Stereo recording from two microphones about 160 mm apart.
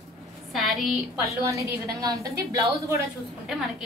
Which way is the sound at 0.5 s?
Centre (ahead or behind).